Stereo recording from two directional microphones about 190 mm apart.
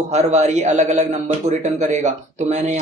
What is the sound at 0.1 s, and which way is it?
A man's voice, 35° right (ahead or behind).